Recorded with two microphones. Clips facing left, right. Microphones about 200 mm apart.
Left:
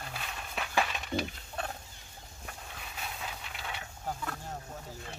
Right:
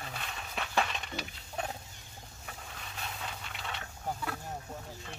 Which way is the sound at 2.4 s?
Centre (ahead or behind).